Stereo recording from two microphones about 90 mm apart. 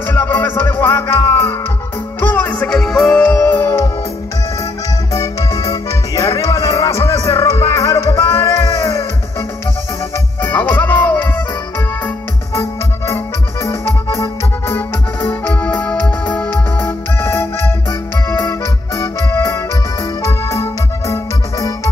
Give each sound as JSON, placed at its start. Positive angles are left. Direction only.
{"t": 0.0, "sound": "music", "side_deg": 20}
{"t": 5.1, "sound": "music", "side_deg": 40}
{"t": 10.4, "sound": "music", "side_deg": 20}
{"t": 12.5, "sound": "music", "side_deg": 30}
{"t": 15.2, "sound": "music", "side_deg": 20}